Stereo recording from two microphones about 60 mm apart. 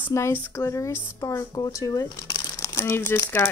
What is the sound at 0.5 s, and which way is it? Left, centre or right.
Speech, left.